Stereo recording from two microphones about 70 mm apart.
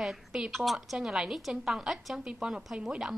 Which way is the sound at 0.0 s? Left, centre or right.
Centre.